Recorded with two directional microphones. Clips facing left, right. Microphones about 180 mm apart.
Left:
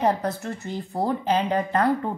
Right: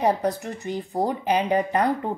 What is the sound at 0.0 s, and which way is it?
A woman's voice, 15° right (ahead or behind).